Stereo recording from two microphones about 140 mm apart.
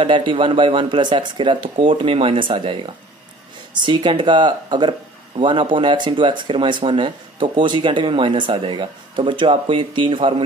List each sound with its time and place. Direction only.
0.0 s speech: 35° right (ahead or behind)